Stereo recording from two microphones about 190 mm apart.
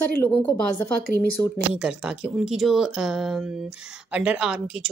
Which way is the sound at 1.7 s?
5° right (ahead or behind).